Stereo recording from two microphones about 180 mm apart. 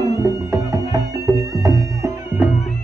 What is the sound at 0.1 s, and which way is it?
Music, 15° right (ahead or behind).